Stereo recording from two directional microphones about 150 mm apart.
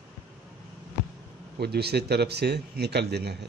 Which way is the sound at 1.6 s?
90° right.